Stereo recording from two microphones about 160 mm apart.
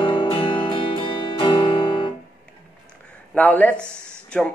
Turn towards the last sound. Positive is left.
turn(degrees=5)  # may be behind; listen again after turning